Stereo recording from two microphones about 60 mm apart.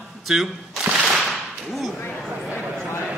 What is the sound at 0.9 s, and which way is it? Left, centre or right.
Whip, right.